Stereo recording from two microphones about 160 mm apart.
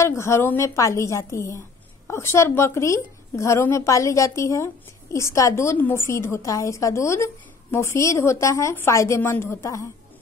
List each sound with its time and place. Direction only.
0.0 s a woman's voice: 20° left (ahead or behind)